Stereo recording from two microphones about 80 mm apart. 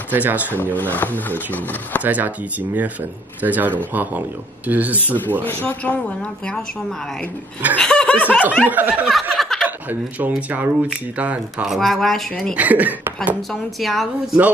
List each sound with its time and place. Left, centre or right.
0.1 s speech: right
0.7 s speech: left
2.0 s speech: right
5.0 s speech: left
7.8 s laughter: centre
8.6 s speech: right
9.3 s a sound: centre
9.8 s speech: right
11.5 s speech: centre
12.5 s speech: right
13.5 s speech: centre